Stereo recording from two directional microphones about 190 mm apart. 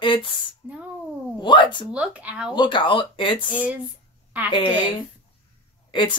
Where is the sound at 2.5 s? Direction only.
25° left (ahead or behind).